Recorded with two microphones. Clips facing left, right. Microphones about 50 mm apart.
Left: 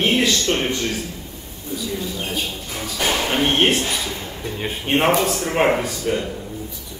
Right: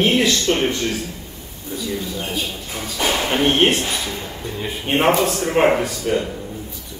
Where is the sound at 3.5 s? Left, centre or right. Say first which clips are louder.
Right 2 dB; centre.